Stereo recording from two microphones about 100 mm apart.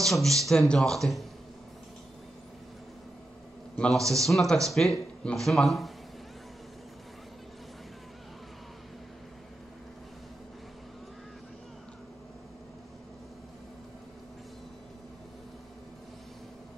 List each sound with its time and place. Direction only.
0.0 s speech: 5° left (ahead or behind)
3.9 s a man's voice: 35° right (ahead or behind)
4.2 s speech: centre (ahead or behind)